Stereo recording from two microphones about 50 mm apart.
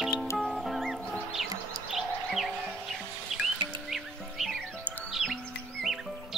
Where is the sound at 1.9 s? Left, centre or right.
Centre.